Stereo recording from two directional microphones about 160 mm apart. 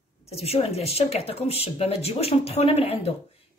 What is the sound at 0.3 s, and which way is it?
Speech, 40° left (ahead or behind).